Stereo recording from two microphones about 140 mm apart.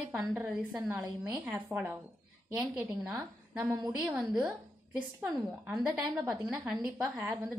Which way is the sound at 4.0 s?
5° right (ahead or behind).